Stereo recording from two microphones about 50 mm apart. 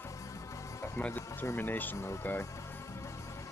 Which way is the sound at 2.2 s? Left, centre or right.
Left.